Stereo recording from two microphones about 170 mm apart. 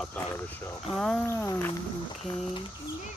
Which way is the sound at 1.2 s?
15° left (ahead or behind).